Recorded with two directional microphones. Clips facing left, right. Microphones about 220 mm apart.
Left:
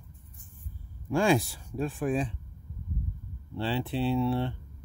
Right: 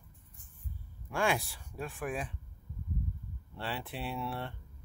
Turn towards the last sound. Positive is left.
turn(degrees=25)  # may be behind; listen again after turning